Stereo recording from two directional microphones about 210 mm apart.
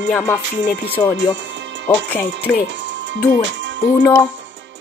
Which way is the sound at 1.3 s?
60° right (ahead or behind).